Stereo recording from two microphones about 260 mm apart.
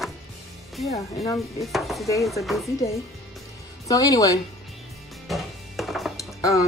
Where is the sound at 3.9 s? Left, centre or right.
Centre.